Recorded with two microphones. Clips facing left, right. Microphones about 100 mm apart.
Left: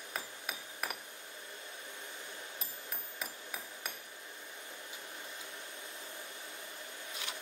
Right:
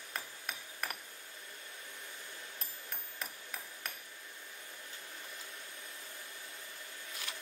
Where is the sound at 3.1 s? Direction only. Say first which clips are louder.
Left 1 dB; 5° left (ahead or behind).